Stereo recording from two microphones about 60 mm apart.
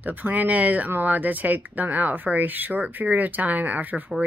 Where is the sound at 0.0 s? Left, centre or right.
Right.